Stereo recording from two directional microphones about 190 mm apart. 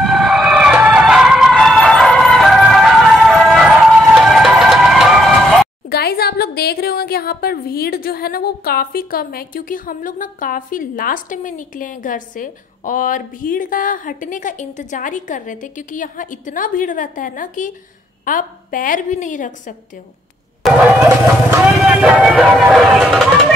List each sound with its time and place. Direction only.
0.0 s vehicle: centre (ahead or behind)
5.9 s a woman's voice: 55° left (ahead or behind)
20.6 s music: centre (ahead or behind)
21.7 s speech: 5° right (ahead or behind)